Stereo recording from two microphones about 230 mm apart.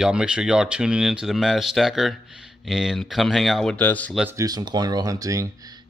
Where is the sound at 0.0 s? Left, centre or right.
Centre.